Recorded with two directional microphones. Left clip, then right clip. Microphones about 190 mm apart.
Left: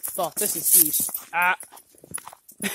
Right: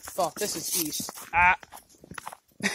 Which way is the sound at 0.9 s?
50° right (ahead or behind).